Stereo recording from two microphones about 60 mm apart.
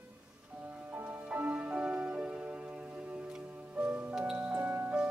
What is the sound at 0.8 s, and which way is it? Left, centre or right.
Music, right.